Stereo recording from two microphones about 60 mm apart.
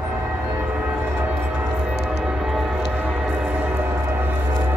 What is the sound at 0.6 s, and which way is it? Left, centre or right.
Train, right.